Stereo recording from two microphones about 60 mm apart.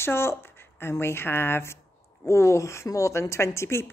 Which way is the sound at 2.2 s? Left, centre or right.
Left.